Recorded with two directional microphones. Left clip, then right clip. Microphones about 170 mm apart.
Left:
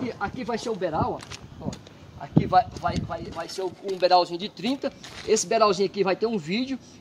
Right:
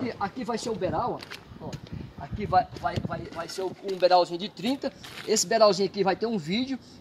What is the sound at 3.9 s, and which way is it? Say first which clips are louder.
Speech: left 1 dB; 40° right (ahead or behind).